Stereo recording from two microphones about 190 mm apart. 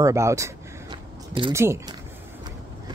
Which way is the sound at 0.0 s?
15° right (ahead or behind).